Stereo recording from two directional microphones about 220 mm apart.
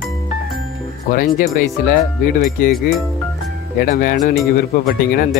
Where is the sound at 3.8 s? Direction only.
40° left (ahead or behind).